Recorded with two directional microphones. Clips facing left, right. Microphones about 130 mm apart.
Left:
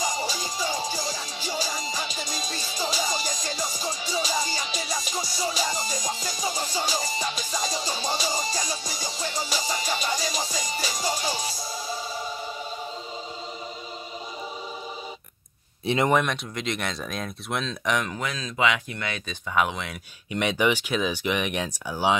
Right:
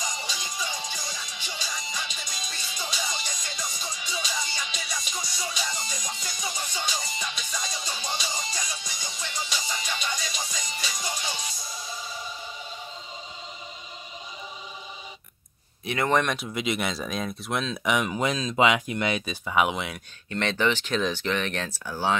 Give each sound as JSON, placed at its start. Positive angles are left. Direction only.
{"t": 0.0, "sound": "music", "side_deg": 35}
{"t": 15.8, "sound": "speech", "side_deg": 30}
{"t": 16.1, "sound": "speech", "side_deg": 0}
{"t": 18.2, "sound": "speech", "side_deg": -20}
{"t": 20.2, "sound": "speech", "side_deg": 10}